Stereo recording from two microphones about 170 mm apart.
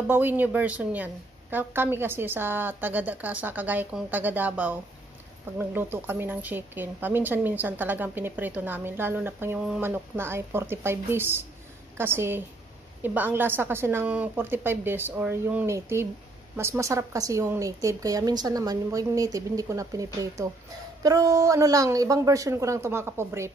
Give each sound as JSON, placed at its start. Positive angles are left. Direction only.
{"t": 0.1, "sound": "a woman's voice", "side_deg": -10}